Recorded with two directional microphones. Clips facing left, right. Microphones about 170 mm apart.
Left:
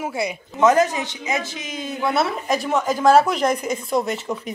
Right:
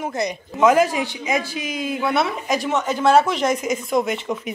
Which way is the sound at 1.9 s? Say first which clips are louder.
Even; 5° right (ahead or behind).